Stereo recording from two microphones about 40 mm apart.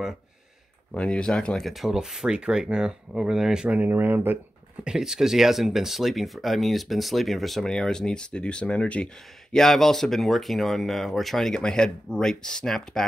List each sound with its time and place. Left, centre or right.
0.9 s speech: left
1.6 s speech: centre
2.0 s speech: centre
3.8 s speech: right
4.8 s speech: centre
7.6 s speech: centre; by 9.0 s left
9.0 s speech: centre
11.6 s speech: left